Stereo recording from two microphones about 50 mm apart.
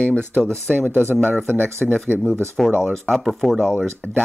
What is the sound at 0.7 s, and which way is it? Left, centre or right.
Speech, right.